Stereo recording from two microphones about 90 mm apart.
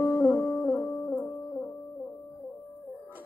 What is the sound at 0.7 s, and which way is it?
Music, 20° left (ahead or behind).